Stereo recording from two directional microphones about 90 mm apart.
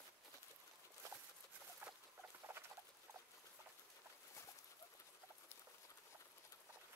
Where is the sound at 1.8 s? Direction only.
20° right (ahead or behind).